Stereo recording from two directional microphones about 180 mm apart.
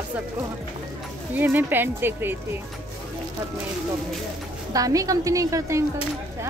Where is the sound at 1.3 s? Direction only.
10° right (ahead or behind).